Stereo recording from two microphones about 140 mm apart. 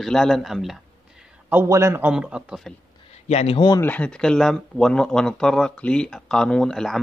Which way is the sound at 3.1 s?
50° left (ahead or behind).